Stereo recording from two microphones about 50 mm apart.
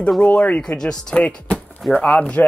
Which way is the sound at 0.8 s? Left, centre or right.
Centre.